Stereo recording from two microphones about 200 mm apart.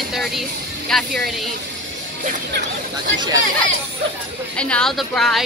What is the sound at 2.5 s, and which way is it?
Speech, 60° right (ahead or behind).